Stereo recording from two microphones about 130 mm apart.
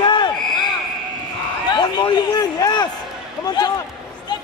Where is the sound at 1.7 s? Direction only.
35° left (ahead or behind).